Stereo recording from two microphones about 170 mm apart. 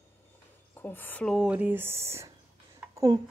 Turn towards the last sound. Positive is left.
turn(degrees=-20)  # may be behind; listen again after turning